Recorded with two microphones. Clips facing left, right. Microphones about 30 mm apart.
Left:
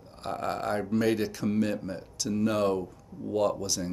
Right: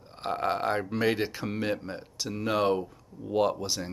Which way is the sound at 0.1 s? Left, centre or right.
Right.